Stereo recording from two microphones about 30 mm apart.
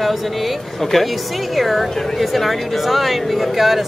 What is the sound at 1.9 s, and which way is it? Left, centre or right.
Speech, centre.